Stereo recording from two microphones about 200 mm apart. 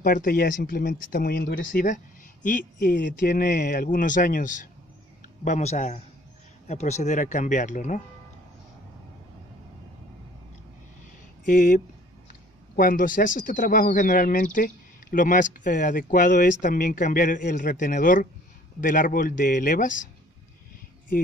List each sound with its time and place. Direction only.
0.0 s speech: 45° left (ahead or behind)
11.4 s speech: 40° left (ahead or behind)